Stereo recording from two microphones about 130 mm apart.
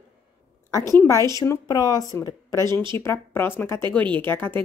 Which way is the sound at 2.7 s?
40° right (ahead or behind).